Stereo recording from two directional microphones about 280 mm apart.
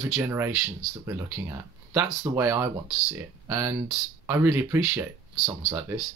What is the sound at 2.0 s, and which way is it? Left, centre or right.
Speech, centre.